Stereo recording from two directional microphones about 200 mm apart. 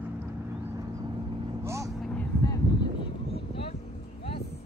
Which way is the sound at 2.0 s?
5° left (ahead or behind).